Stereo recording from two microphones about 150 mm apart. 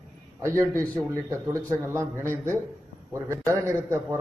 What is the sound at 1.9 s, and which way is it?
A man's voice, 15° right (ahead or behind).